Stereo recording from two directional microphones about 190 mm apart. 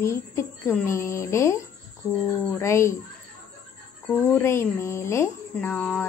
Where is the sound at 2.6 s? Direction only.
15° left (ahead or behind).